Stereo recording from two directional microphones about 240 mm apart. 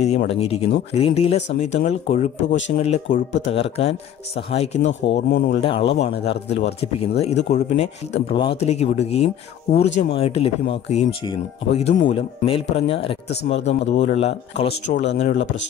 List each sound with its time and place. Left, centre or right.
0.0 s speech: left
5.1 s speech: left
5.6 s speech: left
13.3 s speech: left
14.0 s speech: left
14.7 s speech: left